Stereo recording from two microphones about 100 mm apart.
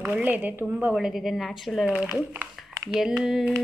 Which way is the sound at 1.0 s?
5° right (ahead or behind).